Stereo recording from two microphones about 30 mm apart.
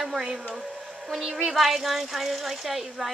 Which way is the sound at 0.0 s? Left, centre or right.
Centre.